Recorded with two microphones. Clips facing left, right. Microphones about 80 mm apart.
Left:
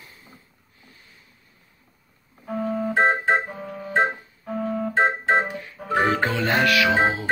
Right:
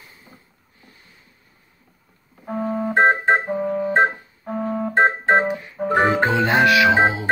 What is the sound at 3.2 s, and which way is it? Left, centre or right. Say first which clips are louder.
Music: right 4 dB; right.